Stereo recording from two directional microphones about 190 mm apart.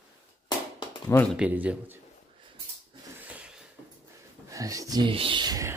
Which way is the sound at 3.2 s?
5° right (ahead or behind).